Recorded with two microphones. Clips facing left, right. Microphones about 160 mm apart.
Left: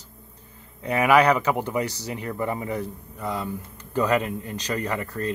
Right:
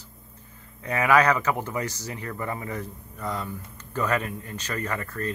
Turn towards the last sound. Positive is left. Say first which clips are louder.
# left 3 dB
turn(degrees=15)  # may be behind; listen again after turning